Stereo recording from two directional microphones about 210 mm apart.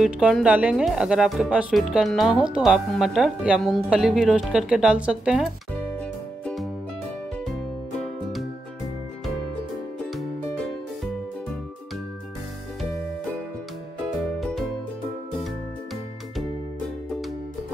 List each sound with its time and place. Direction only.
0.0 s speech: centre (ahead or behind)
6.4 s music: centre (ahead or behind)
8.0 s music: centre (ahead or behind)
14.4 s music: centre (ahead or behind)